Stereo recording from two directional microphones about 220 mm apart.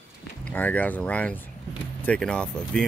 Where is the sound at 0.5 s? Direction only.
5° left (ahead or behind).